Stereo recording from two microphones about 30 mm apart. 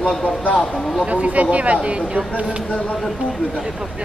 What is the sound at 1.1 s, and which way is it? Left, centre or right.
Speech, right.